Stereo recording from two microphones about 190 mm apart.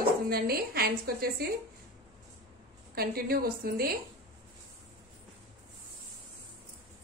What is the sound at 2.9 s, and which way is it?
Speech, 55° right (ahead or behind).